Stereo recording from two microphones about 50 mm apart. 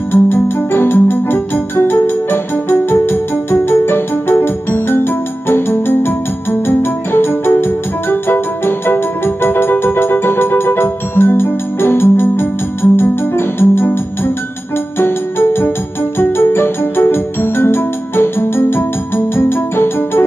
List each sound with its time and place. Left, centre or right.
0.1 s music: left
12.9 s piano: left
15.0 s music: left